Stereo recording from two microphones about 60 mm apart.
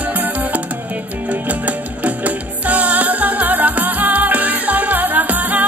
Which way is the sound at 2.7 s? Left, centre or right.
Right.